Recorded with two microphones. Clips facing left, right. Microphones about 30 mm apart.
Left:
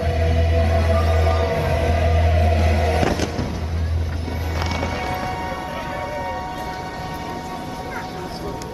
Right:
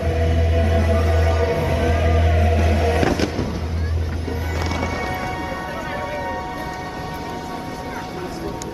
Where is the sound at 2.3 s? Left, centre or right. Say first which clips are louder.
Even; left.